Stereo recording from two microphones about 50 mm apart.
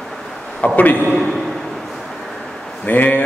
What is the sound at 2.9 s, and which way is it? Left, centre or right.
Speech, left.